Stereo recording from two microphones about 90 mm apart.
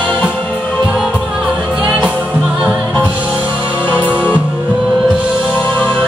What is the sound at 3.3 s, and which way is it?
Music, 20° left (ahead or behind).